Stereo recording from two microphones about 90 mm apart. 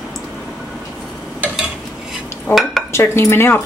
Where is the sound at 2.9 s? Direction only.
30° left (ahead or behind).